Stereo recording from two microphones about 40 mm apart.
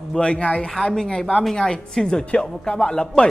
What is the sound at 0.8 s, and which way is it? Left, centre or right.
A woman's voice, centre.